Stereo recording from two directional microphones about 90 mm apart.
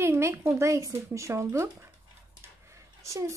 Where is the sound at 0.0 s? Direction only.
30° right (ahead or behind).